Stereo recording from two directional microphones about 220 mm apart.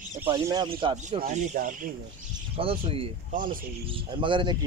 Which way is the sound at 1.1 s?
35° right (ahead or behind).